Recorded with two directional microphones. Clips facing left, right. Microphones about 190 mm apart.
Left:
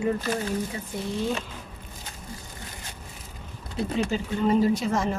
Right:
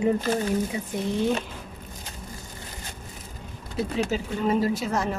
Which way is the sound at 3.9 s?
5° right (ahead or behind).